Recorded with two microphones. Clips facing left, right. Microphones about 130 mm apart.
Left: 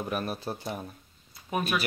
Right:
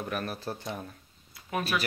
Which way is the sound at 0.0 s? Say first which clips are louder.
Left 2 dB; 15° left (ahead or behind).